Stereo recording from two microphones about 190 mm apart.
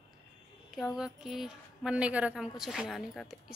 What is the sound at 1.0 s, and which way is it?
A woman's voice, centre (ahead or behind).